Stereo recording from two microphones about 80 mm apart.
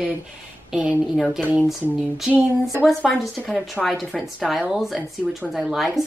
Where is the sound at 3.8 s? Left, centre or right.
Centre.